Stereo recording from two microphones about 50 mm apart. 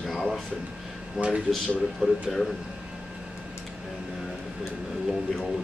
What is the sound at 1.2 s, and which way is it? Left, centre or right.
Speech, centre.